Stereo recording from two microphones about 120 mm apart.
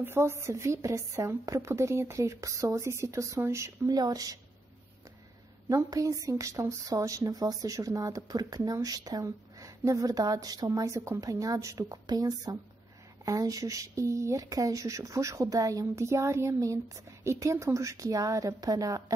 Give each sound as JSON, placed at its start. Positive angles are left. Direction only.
{"t": 0.0, "sound": "speech", "side_deg": -20}
{"t": 5.7, "sound": "speech", "side_deg": -30}